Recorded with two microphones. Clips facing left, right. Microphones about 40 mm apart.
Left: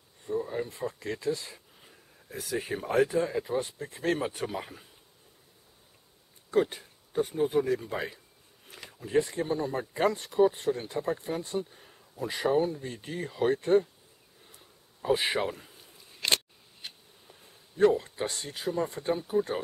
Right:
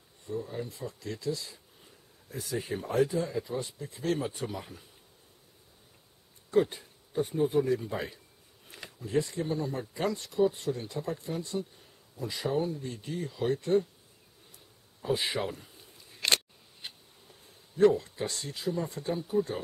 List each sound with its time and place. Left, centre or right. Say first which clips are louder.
0.3 s speech: left 4 dB; left
2.3 s speech: left 1 dB; left
4.3 s speech: left 3 dB; left
6.5 s a sound: even; left
7.3 s a man's voice: right 1 dB; left
15.0 s speech: left 3 dB; left
17.7 s speech: even; left